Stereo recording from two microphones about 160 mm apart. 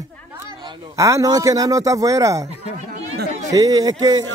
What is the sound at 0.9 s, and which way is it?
A man's voice, 20° right (ahead or behind).